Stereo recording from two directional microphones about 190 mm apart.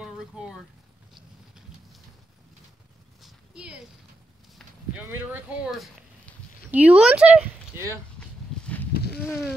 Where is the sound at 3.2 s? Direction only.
5° right (ahead or behind).